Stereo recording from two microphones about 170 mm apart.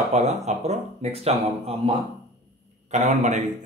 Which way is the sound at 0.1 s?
40° right (ahead or behind).